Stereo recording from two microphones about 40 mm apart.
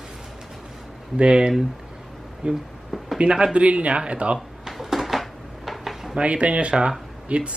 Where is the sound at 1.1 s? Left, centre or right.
Right.